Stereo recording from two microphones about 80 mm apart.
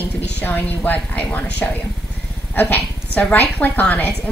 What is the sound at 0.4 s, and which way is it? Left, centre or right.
A woman's voice, left.